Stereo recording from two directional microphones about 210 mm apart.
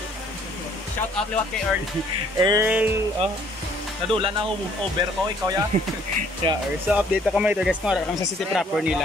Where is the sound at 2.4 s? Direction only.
20° right (ahead or behind).